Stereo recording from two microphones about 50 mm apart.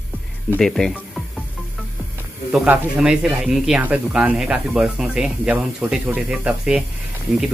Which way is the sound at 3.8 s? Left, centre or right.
Right.